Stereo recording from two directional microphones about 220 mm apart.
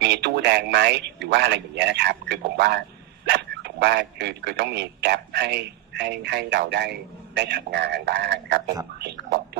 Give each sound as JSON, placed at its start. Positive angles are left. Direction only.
{"t": 0.0, "sound": "a man's voice", "side_deg": -50}